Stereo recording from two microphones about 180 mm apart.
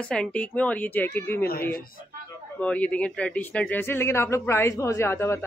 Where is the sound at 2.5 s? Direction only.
5° left (ahead or behind).